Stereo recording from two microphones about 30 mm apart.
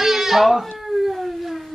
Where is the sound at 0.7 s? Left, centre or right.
Centre.